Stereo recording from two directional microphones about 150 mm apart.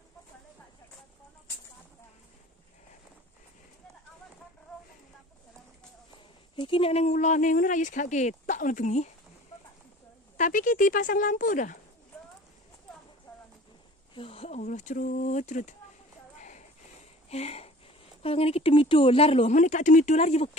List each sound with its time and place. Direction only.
6.5 s speech: 35° left (ahead or behind); by 9.1 s 50° left (ahead or behind)
10.3 s speech: 60° left (ahead or behind)
14.1 s speech: 40° left (ahead or behind)
14.6 s speech: 55° left (ahead or behind)
16.3 s a sound: 55° left (ahead or behind)
17.3 s speech: 45° left (ahead or behind)